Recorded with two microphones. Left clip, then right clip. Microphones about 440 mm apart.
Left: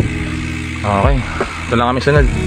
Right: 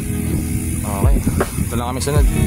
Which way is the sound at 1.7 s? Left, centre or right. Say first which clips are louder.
Left 10 dB; right.